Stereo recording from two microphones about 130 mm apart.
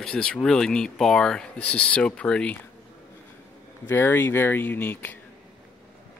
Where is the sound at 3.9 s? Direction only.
15° left (ahead or behind).